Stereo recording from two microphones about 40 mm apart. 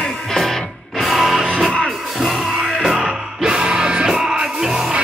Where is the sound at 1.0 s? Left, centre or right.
Centre.